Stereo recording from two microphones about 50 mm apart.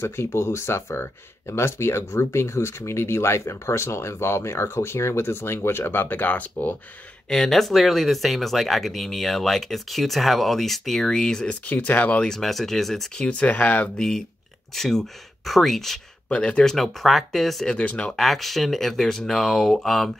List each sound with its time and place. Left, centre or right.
0.0 s speech: left
7.2 s speech: centre
11.4 s speech: left
12.3 s speech: centre
13.2 s speech: left
13.9 s speech: centre
16.3 s speech: left
16.6 s speech: centre
17.6 s speech: left
18.1 s speech: centre